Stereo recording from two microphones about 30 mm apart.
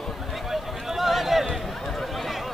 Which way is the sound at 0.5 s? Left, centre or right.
Centre.